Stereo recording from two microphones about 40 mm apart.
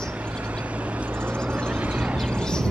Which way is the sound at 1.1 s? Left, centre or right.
Right.